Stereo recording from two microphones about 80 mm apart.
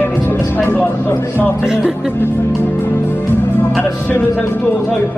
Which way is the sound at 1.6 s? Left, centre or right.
Centre.